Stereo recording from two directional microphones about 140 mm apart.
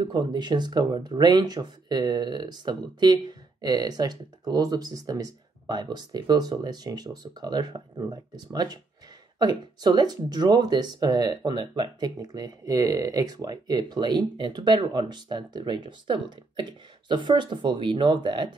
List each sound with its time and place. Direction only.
0.0 s speech: 35° right (ahead or behind)